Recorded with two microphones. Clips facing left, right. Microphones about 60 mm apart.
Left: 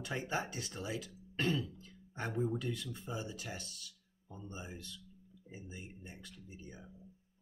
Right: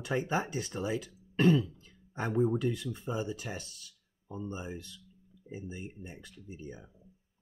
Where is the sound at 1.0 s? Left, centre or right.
Right.